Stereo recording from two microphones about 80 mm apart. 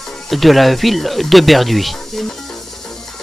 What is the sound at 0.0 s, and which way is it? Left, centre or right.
Music, centre.